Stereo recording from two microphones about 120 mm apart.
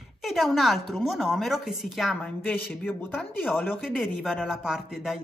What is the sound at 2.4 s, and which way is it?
Speech, 15° left (ahead or behind).